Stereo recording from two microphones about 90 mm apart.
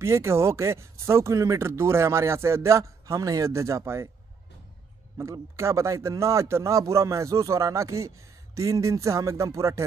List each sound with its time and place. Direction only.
0.0 s speech: 30° right (ahead or behind)
5.1 s speech: 35° right (ahead or behind)